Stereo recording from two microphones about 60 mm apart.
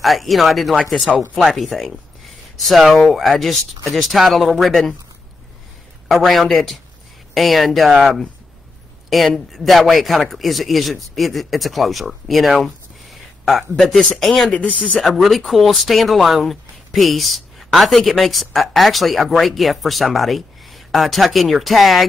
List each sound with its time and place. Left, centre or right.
0.0 s speech: centre
6.0 s speech: centre
14.5 s speech: left
15.0 s speech: centre